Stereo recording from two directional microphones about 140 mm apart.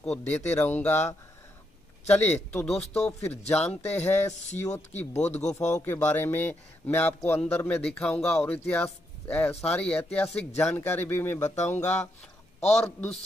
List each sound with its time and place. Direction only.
0.0 s a man's voice: 10° left (ahead or behind)
2.7 s speech: 45° left (ahead or behind)
3.4 s a man's voice: 10° left (ahead or behind)
4.3 s speech: 55° left (ahead or behind)
4.6 s a man's voice: 15° left (ahead or behind)
5.1 s speech: 55° left (ahead or behind)
5.7 s a man's voice: 15° left (ahead or behind)